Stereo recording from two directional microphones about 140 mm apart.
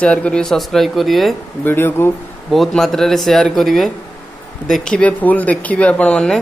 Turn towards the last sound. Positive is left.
turn(degrees=5)  # may be behind; listen again after turning